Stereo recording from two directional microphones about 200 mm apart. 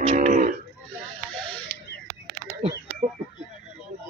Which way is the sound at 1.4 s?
5° left (ahead or behind).